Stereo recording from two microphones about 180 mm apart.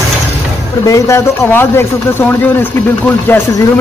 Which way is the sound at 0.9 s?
15° left (ahead or behind).